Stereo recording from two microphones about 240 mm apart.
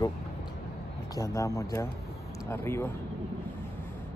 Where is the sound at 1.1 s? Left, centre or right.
Centre.